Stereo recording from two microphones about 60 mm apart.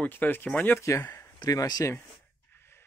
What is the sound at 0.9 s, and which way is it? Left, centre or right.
Speech, left.